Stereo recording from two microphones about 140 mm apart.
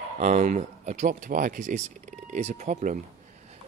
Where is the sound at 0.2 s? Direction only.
65° right (ahead or behind).